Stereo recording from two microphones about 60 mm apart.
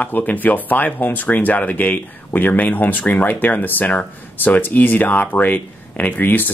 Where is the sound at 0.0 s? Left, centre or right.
Left.